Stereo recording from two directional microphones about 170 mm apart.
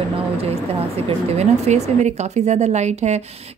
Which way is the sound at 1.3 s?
40° right (ahead or behind).